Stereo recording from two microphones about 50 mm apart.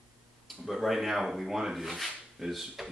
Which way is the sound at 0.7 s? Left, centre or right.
Centre.